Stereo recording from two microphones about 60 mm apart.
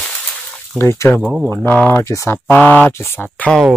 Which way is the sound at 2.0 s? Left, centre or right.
Left.